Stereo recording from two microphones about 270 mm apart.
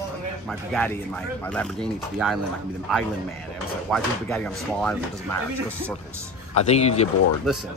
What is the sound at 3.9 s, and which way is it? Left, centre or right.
Speech, centre.